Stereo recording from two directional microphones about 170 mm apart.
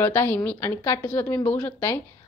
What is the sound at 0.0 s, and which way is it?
A woman's voice, 15° left (ahead or behind).